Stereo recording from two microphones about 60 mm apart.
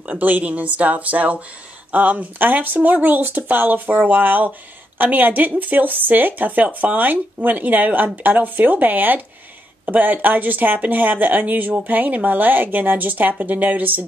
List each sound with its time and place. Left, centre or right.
0.0 s speech: right